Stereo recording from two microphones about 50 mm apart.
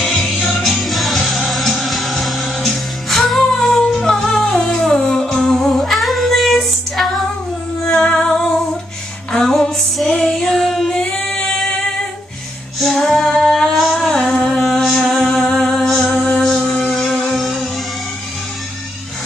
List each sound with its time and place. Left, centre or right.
0.0 s music: centre
0.8 s music: centre
8.0 s music: centre
10.0 s child singing: centre
10.9 s music: centre
12.8 s female singing: centre
16.6 s a sound: centre